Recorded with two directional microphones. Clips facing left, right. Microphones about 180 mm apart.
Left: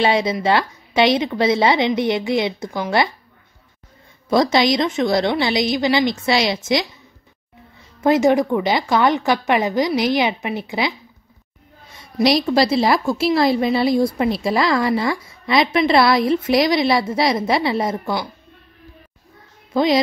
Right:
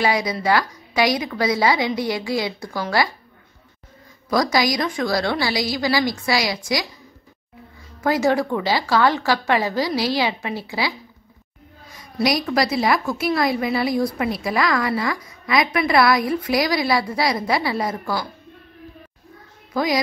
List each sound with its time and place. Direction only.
0.0 s a woman's voice: 25° left (ahead or behind)
4.3 s a woman's voice: 25° left (ahead or behind)
8.0 s a woman's voice: 20° left (ahead or behind)
19.7 s speech: 25° left (ahead or behind)